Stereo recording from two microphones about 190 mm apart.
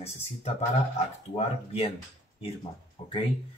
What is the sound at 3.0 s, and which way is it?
Speech, 35° left (ahead or behind).